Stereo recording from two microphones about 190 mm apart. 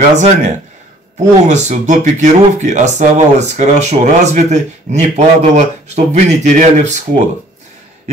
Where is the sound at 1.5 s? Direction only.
40° right (ahead or behind).